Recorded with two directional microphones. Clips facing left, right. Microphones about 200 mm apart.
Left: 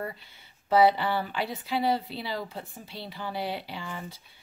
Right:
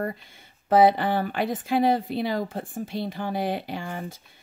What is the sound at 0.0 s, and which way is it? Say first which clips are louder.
Speech: right 6 dB; 50° right (ahead or behind).